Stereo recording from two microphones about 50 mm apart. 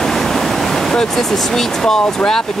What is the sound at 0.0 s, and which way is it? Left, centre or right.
Waves, centre.